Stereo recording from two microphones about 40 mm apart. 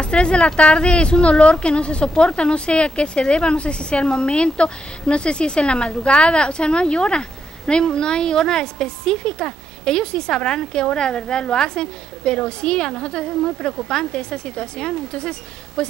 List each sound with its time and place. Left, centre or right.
0.0 s a woman's voice: left